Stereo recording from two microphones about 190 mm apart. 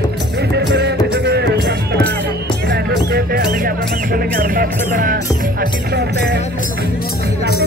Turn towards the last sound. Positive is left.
turn(degrees=-60)  # may be behind; listen again after turning